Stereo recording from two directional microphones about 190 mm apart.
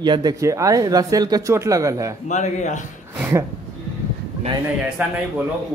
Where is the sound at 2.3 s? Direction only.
40° left (ahead or behind).